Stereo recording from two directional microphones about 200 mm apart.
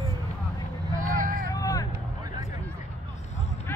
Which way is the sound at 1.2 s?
40° right (ahead or behind).